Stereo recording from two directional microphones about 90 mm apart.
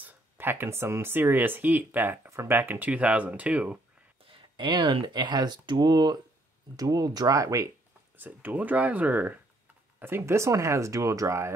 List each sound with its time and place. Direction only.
0.0 s speech: 25° right (ahead or behind)
4.3 s speech: 70° right (ahead or behind); by 7.7 s 40° right (ahead or behind)
8.2 s speech: 20° right (ahead or behind)